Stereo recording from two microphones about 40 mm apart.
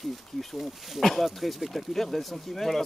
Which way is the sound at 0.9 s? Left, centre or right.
Centre.